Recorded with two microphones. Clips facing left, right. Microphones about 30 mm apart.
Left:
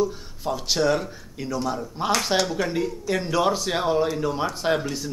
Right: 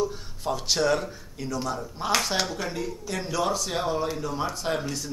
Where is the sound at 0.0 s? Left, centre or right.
Centre.